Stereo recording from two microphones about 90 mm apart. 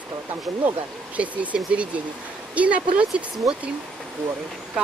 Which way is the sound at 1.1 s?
15° right (ahead or behind).